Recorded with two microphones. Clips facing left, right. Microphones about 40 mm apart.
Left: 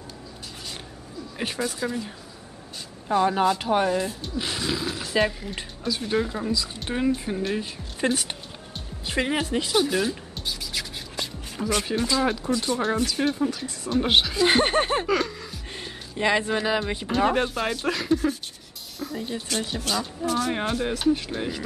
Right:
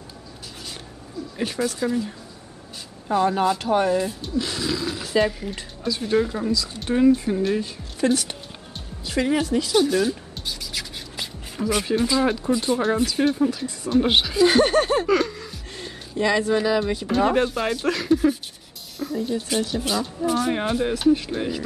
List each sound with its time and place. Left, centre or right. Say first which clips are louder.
1.4 s speech: right 3 dB; centre
4.4 s speech: right 3 dB; centre
6.5 s speech: right 2 dB; centre
6.9 s speech: right 8 dB; centre
8.0 s speech: right 4 dB; left
9.8 s a sound: right 3 dB; centre
11.6 s speech: right 3 dB; centre
13.0 s speech: right 4 dB; centre
14.4 s speech: right 7 dB; left
15.0 s music: right 4 dB; centre
16.2 s speech: right 3 dB; left
17.1 s speech: right 2 dB; centre
18.9 s music: right 5 dB; centre
19.5 s speech: right 2 dB; centre